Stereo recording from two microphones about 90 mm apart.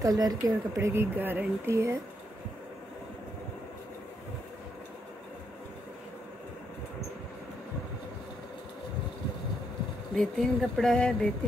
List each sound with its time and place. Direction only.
0.0 s a woman's voice: 40° right (ahead or behind)
1.1 s speech: 20° right (ahead or behind)
10.1 s speech: 5° left (ahead or behind)